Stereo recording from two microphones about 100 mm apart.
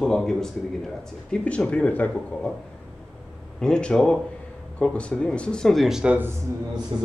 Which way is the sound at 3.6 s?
10° left (ahead or behind).